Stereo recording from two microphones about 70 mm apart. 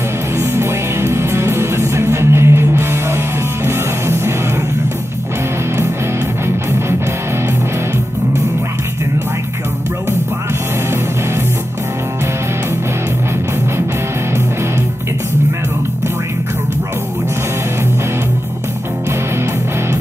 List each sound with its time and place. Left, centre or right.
0.4 s music: right
6.4 s music: right